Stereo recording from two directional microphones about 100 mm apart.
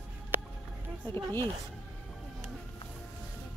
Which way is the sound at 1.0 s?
25° left (ahead or behind).